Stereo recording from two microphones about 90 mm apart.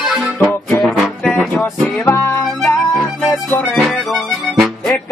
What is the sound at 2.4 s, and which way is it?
Music, centre (ahead or behind).